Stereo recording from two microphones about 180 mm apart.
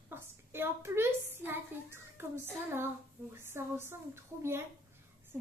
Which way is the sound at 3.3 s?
15° right (ahead or behind).